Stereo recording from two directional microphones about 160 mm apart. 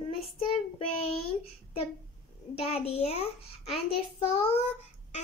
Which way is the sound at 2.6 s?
40° left (ahead or behind).